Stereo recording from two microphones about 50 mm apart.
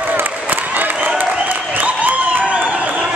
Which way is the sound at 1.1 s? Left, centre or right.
Right.